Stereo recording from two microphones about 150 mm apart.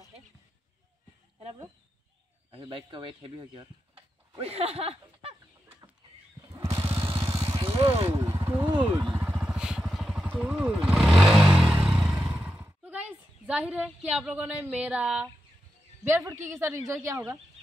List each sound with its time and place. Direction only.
2.5 s speech: 30° right (ahead or behind)
6.5 s motorcycle: 20° right (ahead or behind)
7.2 s vehicle: 30° right (ahead or behind)
8.2 s vehicle: 20° right (ahead or behind)
8.6 s vehicle: 30° right (ahead or behind)
9.2 s vehicle: 5° right (ahead or behind)
12.3 s speech: 10° right (ahead or behind)
16.3 s a woman's voice: 20° right (ahead or behind)